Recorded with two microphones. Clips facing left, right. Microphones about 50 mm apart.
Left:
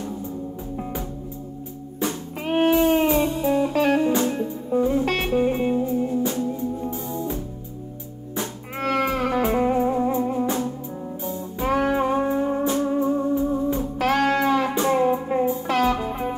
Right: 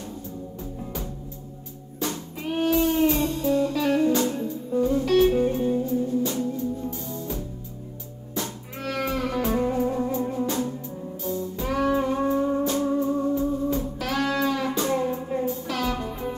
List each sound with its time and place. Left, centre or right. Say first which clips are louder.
2.4 s music: left 4 dB; left
3.3 s music: left 2 dB; left
3.7 s music: left 2 dB; left
6.2 s music: left 2 dB; left
8.7 s music: left 5 dB; left
11.6 s music: left 3 dB; left
13.9 s music: left 5 dB; left